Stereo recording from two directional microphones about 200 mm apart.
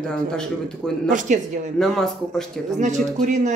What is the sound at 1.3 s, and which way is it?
Speech, 40° right (ahead or behind).